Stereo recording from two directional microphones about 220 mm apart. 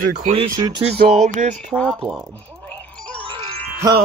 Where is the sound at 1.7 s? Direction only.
5° left (ahead or behind).